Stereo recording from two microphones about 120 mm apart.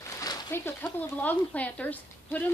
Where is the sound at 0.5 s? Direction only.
15° left (ahead or behind).